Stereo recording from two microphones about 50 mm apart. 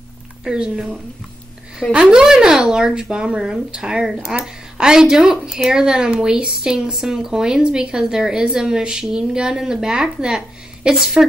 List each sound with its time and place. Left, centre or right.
0.4 s speech: centre